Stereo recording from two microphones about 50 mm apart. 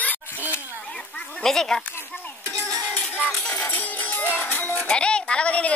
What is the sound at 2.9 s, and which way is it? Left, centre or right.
Music, left.